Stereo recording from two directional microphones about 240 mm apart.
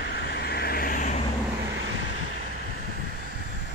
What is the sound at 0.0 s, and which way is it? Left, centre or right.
Vehicle, left.